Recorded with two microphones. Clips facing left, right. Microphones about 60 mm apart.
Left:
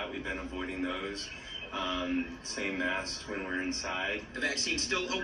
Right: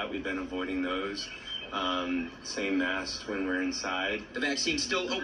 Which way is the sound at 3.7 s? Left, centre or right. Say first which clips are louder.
Right 2 dB; right.